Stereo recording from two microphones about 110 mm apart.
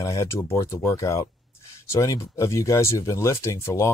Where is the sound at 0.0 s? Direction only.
25° left (ahead or behind).